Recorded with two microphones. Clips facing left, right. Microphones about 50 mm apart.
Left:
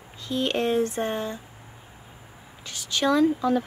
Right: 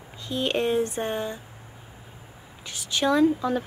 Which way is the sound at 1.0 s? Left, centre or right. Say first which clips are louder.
Left 1 dB; centre.